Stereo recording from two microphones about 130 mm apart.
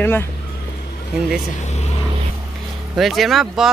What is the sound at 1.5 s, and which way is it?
Speech, 60° left (ahead or behind).